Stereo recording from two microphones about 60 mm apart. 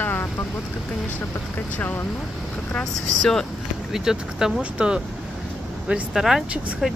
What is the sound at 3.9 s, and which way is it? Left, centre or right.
Speech, centre.